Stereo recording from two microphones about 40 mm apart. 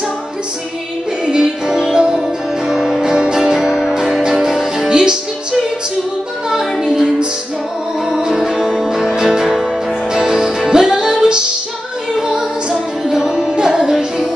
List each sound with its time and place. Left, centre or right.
1.2 s music: centre
6.5 s music: centre
8.2 s music: centre